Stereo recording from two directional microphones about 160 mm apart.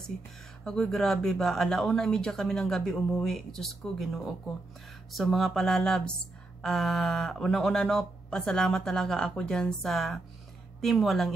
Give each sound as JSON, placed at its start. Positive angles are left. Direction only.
{"t": 0.7, "sound": "speech", "side_deg": 5}